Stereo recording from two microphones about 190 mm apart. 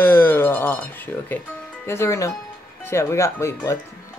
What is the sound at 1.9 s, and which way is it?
Speech, 15° left (ahead or behind).